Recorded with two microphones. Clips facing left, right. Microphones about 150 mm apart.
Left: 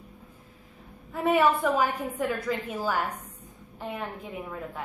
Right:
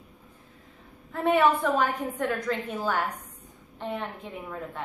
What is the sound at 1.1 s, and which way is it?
A woman's voice, 5° left (ahead or behind).